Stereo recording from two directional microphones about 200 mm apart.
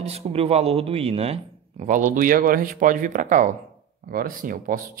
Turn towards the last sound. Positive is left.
turn(degrees=-45)  # may be behind; listen again after turning